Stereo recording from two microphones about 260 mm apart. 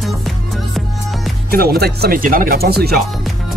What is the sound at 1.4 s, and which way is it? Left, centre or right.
Speech, right.